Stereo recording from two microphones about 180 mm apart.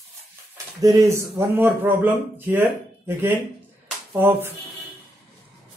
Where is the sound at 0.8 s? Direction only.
20° right (ahead or behind).